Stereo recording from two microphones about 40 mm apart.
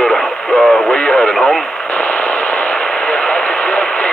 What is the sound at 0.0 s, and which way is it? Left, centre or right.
Radio, centre.